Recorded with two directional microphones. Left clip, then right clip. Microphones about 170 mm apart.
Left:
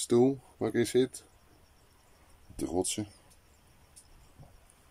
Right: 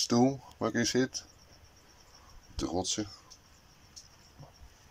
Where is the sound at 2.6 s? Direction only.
20° left (ahead or behind).